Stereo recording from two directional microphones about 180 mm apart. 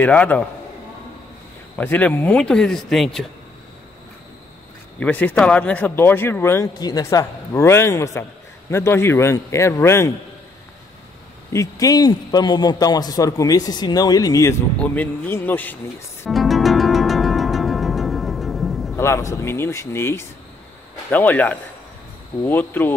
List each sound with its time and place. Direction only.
0.0 s speech: 10° left (ahead or behind)
1.8 s speech: 10° left (ahead or behind)
5.0 s speech: 10° left (ahead or behind)
11.5 s a man's voice: 20° left (ahead or behind)
16.3 s music: centre (ahead or behind)
18.9 s speech: 15° left (ahead or behind)